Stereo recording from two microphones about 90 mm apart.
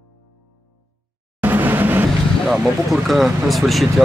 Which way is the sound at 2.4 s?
5° right (ahead or behind).